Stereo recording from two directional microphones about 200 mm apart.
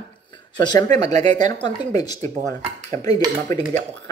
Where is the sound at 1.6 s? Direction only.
20° left (ahead or behind).